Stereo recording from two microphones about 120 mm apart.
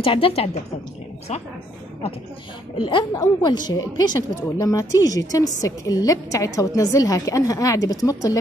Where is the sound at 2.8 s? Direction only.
40° left (ahead or behind).